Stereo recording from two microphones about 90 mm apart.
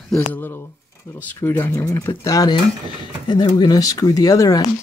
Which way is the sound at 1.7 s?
40° left (ahead or behind).